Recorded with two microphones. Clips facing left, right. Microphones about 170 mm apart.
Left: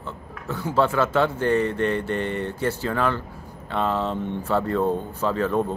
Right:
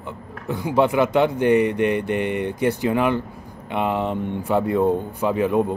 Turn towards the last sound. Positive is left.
turn(degrees=-10)  # may be behind; listen again after turning